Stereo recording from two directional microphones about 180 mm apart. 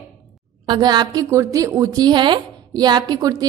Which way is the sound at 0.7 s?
25° right (ahead or behind).